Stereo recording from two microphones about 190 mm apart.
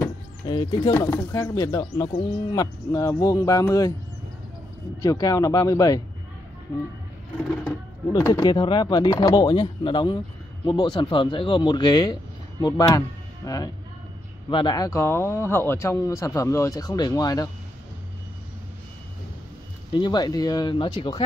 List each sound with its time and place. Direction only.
0.0 s a sound: 20° left (ahead or behind)
0.9 s speech: 15° left (ahead or behind)
5.0 s speech: 15° left (ahead or behind)
8.1 s speech: 20° left (ahead or behind)
19.9 s speech: 25° left (ahead or behind)